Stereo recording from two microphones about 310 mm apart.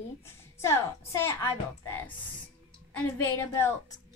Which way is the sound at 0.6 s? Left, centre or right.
Centre.